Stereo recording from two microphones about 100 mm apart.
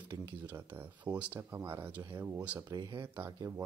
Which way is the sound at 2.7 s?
40° right (ahead or behind).